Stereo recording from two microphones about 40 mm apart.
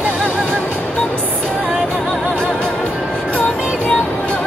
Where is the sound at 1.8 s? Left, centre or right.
Left.